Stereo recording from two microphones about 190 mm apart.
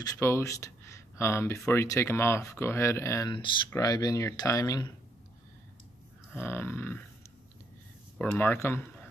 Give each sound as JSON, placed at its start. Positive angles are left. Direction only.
{"t": 0.0, "sound": "speech", "side_deg": 15}
{"t": 6.3, "sound": "speech", "side_deg": 10}
{"t": 8.2, "sound": "speech", "side_deg": 5}